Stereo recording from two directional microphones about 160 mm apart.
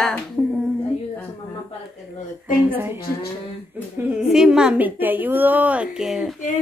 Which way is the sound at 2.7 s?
15° right (ahead or behind).